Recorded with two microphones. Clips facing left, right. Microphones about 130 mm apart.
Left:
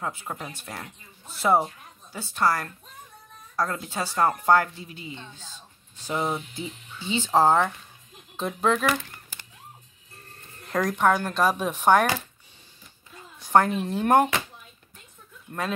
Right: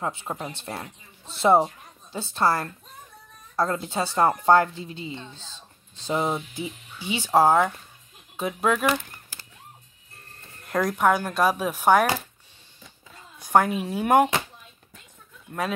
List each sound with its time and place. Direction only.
0.0 s a woman's voice: 25° right (ahead or behind)
10.7 s speech: 5° right (ahead or behind)
13.4 s speech: 10° right (ahead or behind)